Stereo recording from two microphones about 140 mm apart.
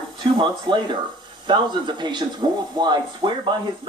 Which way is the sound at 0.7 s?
35° right (ahead or behind).